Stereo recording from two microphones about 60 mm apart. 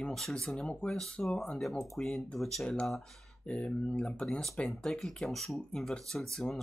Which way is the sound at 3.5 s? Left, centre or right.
Centre.